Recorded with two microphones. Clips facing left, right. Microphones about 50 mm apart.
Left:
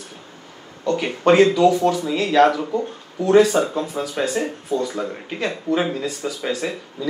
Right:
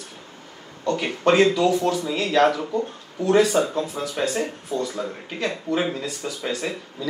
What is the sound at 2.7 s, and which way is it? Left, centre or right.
Speech, left.